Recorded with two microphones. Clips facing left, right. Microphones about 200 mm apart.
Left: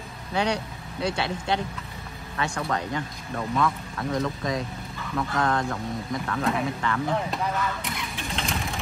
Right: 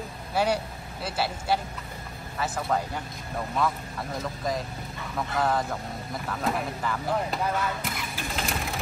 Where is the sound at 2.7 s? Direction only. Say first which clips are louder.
Even; 80° left.